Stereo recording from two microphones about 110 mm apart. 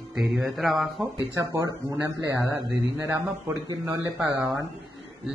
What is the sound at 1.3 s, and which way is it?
Speech, 25° right (ahead or behind).